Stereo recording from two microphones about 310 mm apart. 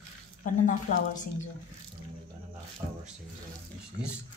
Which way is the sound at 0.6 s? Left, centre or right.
Left.